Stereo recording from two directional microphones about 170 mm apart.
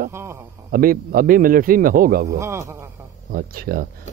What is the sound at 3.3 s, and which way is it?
Speech, 60° right (ahead or behind).